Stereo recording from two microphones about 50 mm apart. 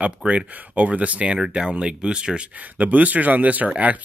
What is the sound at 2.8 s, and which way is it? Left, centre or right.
Speech, right.